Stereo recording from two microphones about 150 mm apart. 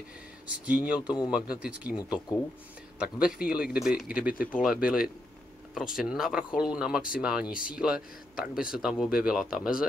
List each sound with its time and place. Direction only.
0.5 s a man's voice: 10° right (ahead or behind)
2.0 s speech: 25° left (ahead or behind)
3.0 s a man's voice: 5° right (ahead or behind)